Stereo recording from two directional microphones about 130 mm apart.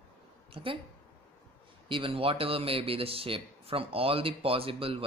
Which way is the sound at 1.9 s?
40° right (ahead or behind).